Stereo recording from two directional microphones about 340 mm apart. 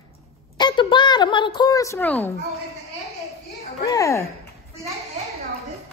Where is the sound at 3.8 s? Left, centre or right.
Centre.